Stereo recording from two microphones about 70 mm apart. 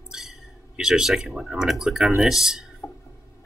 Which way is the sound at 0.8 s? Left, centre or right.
Centre.